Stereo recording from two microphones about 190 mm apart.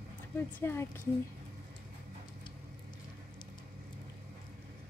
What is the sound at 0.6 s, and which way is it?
Speech, 15° left (ahead or behind).